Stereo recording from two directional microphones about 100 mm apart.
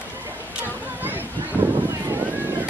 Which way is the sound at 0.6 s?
20° right (ahead or behind).